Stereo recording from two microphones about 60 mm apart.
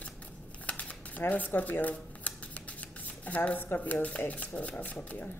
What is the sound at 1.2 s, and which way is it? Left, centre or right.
Speech, left.